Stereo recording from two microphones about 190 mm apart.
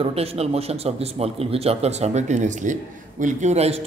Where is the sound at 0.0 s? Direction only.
30° right (ahead or behind).